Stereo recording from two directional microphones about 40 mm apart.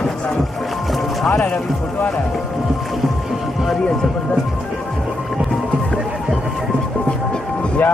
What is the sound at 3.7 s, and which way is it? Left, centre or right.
Speech, centre.